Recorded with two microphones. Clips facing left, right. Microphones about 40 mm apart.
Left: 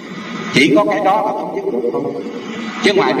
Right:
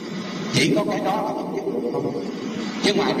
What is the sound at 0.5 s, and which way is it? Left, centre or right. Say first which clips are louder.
A man's voice: left 9 dB; left.